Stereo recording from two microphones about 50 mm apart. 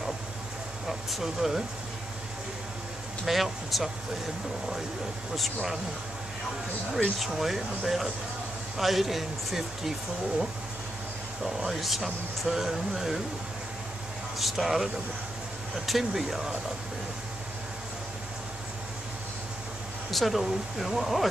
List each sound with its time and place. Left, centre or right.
0.8 s speech: centre
3.3 s speech: centre
5.3 s speech: centre
7.0 s speech: centre
11.4 s speech: centre
14.4 s speech: centre
15.9 s speech: centre
20.1 s speech: centre